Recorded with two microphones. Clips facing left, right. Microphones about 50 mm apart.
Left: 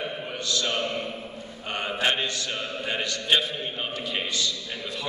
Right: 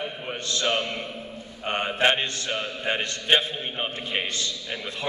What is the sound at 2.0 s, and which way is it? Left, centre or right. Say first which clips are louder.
A man's voice: right 3 dB; right.